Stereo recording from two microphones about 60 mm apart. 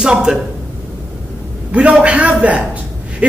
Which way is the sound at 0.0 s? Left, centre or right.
Centre.